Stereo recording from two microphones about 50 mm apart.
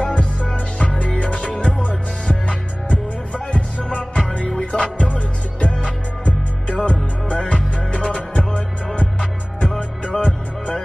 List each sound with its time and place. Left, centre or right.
0.0 s music: left